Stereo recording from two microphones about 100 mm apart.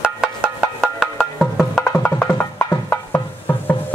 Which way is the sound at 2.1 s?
20° left (ahead or behind).